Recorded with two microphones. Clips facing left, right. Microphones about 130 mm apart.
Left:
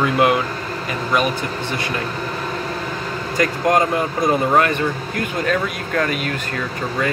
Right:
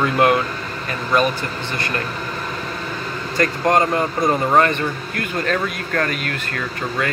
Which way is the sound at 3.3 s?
10° left (ahead or behind).